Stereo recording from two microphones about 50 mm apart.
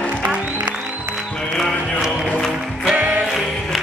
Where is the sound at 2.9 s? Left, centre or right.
Right.